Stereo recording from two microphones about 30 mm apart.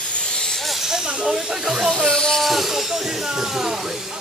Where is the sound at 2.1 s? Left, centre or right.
Left.